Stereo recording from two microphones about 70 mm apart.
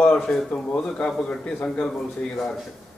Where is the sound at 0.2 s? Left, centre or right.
Centre.